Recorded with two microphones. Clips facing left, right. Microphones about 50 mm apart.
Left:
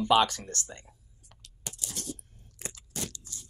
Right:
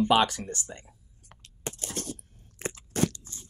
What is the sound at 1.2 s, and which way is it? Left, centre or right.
Crunch, right.